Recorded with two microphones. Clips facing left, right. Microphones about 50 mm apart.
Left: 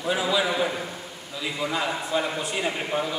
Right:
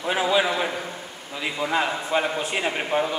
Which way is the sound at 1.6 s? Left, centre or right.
Right.